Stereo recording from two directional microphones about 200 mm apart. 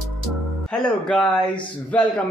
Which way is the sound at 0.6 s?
5° left (ahead or behind).